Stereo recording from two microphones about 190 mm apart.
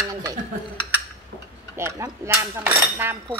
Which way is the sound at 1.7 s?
15° right (ahead or behind).